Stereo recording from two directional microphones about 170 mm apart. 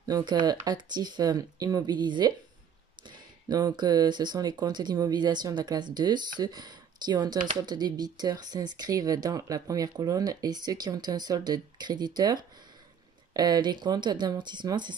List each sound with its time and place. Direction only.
0.1 s speech: 25° right (ahead or behind)